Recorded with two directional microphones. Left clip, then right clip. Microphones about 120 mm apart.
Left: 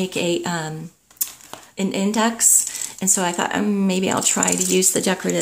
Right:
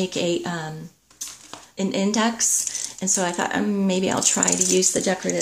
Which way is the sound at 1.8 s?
5° left (ahead or behind).